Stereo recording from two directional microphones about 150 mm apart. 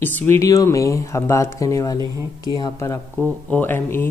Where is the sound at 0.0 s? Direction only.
10° left (ahead or behind); by 2.9 s 25° left (ahead or behind).